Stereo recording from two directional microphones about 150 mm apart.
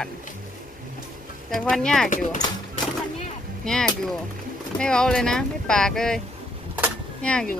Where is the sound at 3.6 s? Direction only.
5° left (ahead or behind).